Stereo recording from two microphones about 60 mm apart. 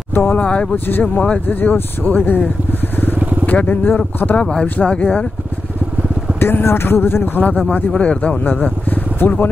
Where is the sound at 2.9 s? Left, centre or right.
Left.